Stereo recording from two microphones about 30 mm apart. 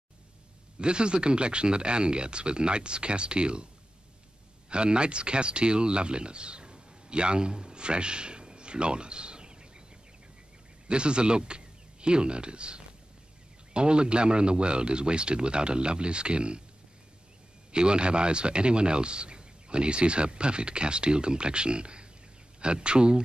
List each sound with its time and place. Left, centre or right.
0.7 s speech: right
4.6 s speech: right
10.9 s speech: right
17.7 s speech: right